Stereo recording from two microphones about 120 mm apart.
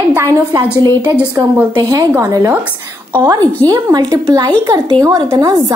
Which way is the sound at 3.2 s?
30° right (ahead or behind).